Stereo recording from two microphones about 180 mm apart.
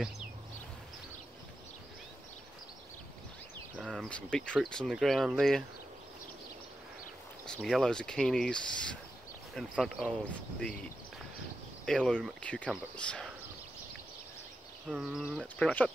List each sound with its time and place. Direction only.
3.7 s speech: 5° left (ahead or behind)
7.4 s speech: 5° left (ahead or behind)
11.8 s speech: 5° left (ahead or behind)
14.9 s speech: centre (ahead or behind)